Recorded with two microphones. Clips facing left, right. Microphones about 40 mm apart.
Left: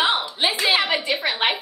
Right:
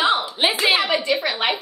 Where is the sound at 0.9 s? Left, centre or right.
Centre.